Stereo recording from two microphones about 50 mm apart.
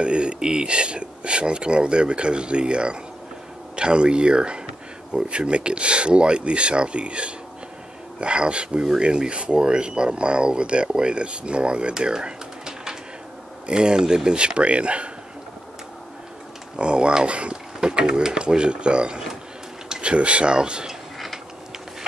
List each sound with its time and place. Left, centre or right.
0.0 s speech: right
16.7 s speech: centre